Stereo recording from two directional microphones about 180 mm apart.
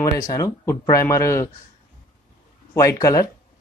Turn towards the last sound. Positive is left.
turn(degrees=20)  # may be behind; listen again after turning